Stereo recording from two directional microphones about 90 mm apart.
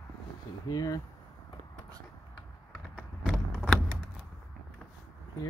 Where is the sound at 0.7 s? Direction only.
45° left (ahead or behind).